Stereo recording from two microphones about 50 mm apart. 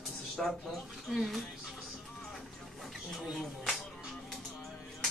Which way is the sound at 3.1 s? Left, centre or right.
Centre.